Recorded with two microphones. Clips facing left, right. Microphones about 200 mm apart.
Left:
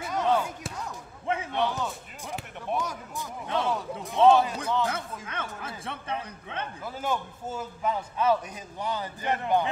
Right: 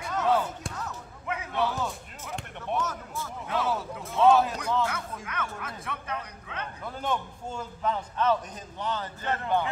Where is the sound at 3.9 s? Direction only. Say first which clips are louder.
Left 2 dB; 25° left (ahead or behind).